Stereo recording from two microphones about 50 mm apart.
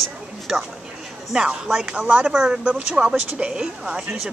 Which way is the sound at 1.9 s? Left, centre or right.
Right.